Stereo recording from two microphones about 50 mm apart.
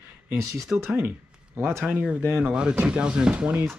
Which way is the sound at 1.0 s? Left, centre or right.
Right.